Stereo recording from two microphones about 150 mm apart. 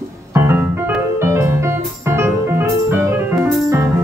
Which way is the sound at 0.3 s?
15° right (ahead or behind).